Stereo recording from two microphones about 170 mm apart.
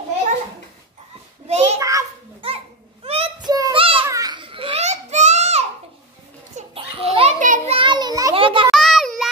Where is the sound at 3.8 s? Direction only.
30° right (ahead or behind).